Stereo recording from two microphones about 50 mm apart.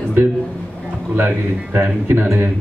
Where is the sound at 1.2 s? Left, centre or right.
Right.